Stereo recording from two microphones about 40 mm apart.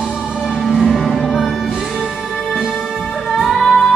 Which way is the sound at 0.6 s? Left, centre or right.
Centre.